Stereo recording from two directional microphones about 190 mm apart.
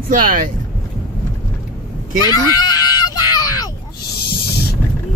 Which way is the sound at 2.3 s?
20° left (ahead or behind).